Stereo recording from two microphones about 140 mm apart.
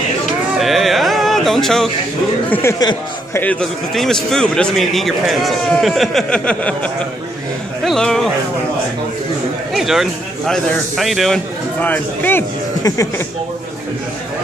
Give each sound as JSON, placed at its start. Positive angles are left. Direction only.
{"t": 0.6, "sound": "a sound", "side_deg": 0}
{"t": 3.3, "sound": "a man's voice", "side_deg": 10}
{"t": 9.8, "sound": "a man's voice", "side_deg": 0}
{"t": 11.8, "sound": "speech", "side_deg": 15}